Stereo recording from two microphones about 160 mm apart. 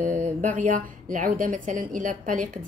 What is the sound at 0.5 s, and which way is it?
A woman's voice, 55° right (ahead or behind).